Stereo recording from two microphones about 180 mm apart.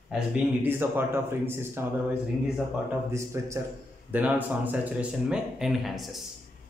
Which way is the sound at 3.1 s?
15° right (ahead or behind).